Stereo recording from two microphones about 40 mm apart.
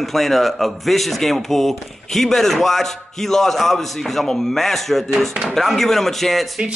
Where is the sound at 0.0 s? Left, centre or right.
Centre.